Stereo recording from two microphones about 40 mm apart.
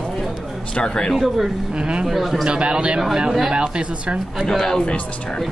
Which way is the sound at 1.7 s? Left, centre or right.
Right.